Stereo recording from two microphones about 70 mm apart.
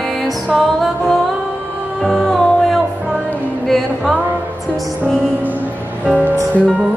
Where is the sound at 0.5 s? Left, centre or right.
Centre.